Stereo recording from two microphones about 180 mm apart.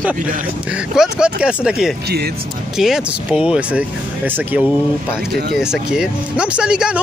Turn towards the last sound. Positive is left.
turn(degrees=-5)  # may be behind; listen again after turning